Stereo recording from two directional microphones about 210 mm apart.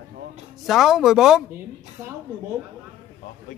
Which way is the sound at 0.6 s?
Centre (ahead or behind).